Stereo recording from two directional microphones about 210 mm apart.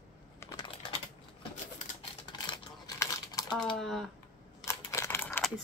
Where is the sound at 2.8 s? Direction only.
15° left (ahead or behind).